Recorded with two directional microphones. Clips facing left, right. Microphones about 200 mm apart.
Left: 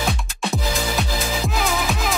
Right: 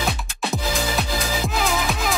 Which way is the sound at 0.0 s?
Centre (ahead or behind).